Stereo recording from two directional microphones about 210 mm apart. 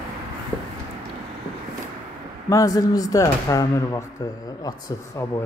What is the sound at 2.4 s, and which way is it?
Speech, 15° left (ahead or behind).